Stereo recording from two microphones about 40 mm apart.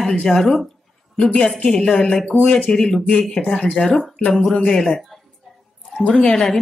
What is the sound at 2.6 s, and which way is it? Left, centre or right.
A man's voice, centre.